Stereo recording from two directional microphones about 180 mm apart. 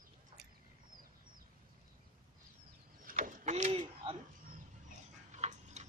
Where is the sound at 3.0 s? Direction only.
45° right (ahead or behind).